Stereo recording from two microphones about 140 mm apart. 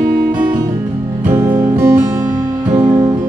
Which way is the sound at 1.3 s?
15° right (ahead or behind).